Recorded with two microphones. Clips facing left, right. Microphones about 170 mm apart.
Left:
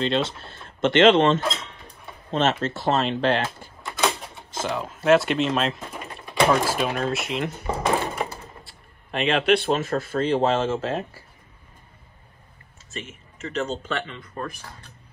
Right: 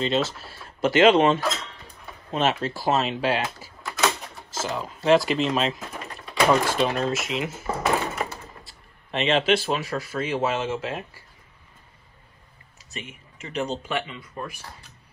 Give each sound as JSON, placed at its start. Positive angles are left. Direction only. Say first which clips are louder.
{"t": 0.0, "sound": "speech", "louder": "even", "side_deg": -5}
{"t": 1.6, "sound": "dishes", "louder": "even", "side_deg": 0}
{"t": 2.8, "sound": "speech", "louder": "left 1 dB", "side_deg": -5}
{"t": 6.0, "sound": "a sound", "louder": "even", "side_deg": 0}
{"t": 7.0, "sound": "door", "louder": "even", "side_deg": 0}
{"t": 9.7, "sound": "speech", "louder": "left 4 dB", "side_deg": 40}
{"t": 13.6, "sound": "speech", "louder": "even", "side_deg": -10}